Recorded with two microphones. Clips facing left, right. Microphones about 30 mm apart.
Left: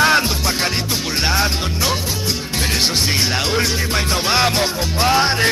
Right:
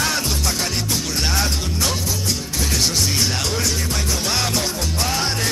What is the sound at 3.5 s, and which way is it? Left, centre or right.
Music, left.